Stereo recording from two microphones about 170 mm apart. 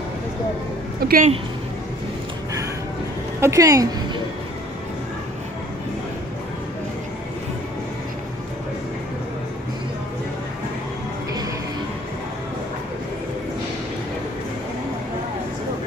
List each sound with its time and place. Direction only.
1.0 s a woman's voice: 55° right (ahead or behind)
3.3 s a woman's voice: 15° right (ahead or behind)